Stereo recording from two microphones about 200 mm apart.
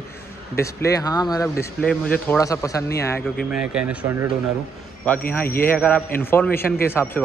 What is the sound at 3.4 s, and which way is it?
Speech, 5° right (ahead or behind).